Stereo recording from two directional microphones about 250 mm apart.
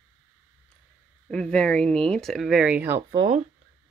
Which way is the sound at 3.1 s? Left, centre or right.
Right.